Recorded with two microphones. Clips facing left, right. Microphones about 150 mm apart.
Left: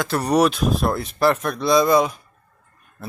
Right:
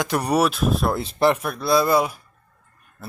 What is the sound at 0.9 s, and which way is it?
Speech, 25° right (ahead or behind).